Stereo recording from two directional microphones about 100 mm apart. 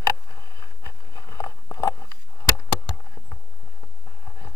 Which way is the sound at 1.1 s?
35° left (ahead or behind).